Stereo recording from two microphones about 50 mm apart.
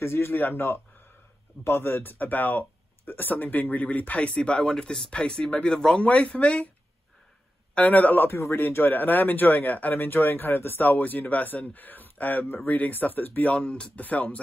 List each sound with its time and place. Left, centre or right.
0.0 s speech: left
1.6 s speech: left; by 6.0 s centre
6.0 s speech: left
7.7 s speech: left
8.3 s speech: left
13.6 s speech: left